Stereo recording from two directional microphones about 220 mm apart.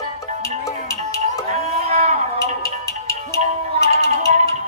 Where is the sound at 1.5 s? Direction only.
30° right (ahead or behind).